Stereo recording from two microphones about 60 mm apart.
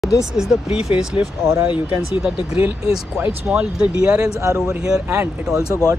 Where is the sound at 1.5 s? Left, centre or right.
Right.